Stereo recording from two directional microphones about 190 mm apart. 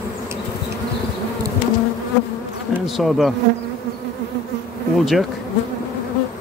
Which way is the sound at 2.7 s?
Centre (ahead or behind).